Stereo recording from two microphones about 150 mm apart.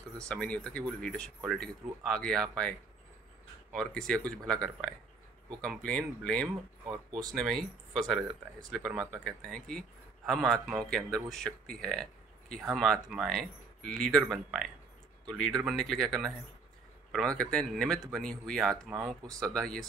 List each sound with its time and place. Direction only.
0.2 s speech: 10° left (ahead or behind)
3.7 s speech: 5° left (ahead or behind)
5.9 s speech: 5° left (ahead or behind)
6.9 s speech: 25° right (ahead or behind)
7.3 s a man's voice: centre (ahead or behind)